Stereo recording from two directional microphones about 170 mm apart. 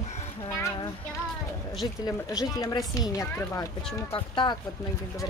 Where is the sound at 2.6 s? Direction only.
20° left (ahead or behind).